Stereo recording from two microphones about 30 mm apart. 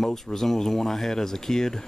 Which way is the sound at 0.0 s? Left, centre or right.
Centre.